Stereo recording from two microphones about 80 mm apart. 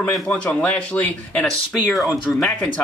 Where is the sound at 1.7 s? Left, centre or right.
Centre.